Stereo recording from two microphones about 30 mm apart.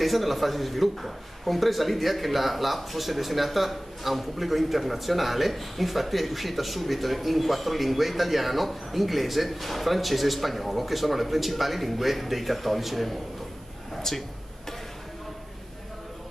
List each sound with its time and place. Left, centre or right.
0.0 s a man's voice: centre
14.1 s speech: centre